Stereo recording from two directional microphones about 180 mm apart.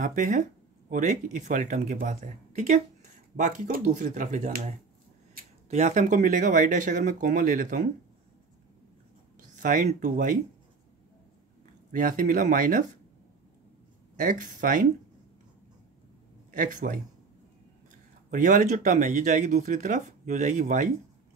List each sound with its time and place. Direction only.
0.0 s speech: 45° right (ahead or behind)
5.4 s a sound: 55° right (ahead or behind)
5.7 s speech: 40° right (ahead or behind)
9.6 s speech: 45° right (ahead or behind)
11.9 s speech: 50° right (ahead or behind)
14.1 s speech: 45° right (ahead or behind)
16.5 s speech: 50° right (ahead or behind)
18.3 s speech: 45° right (ahead or behind)